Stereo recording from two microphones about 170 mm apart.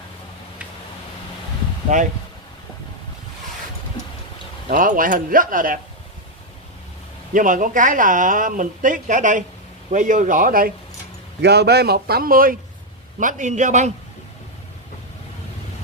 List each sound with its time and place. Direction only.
1.9 s a woman's voice: 45° right (ahead or behind)
4.6 s a woman's voice: 55° right (ahead or behind)
7.3 s a woman's voice: 50° right (ahead or behind)
11.4 s a man's voice: 75° right (ahead or behind); by 13.9 s 45° right (ahead or behind)